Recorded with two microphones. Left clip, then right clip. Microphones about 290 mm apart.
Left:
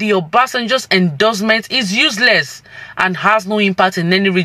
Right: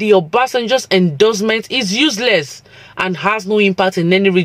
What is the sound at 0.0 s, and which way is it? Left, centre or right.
Speech, left.